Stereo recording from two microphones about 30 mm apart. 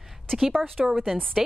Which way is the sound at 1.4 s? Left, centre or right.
Centre.